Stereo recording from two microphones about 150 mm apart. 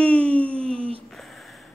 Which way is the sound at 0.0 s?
10° left (ahead or behind).